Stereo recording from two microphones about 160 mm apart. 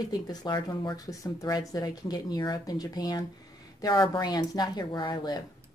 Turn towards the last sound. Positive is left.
turn(degrees=30)  # may be behind; listen again after turning